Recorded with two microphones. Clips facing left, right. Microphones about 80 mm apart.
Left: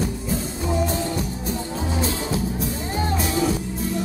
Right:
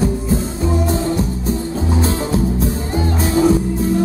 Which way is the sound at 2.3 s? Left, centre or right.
Right.